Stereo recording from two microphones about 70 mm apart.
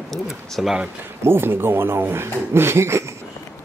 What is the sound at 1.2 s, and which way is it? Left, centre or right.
Speech, right.